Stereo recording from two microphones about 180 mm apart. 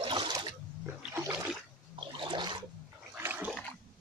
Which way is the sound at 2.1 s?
25° right (ahead or behind).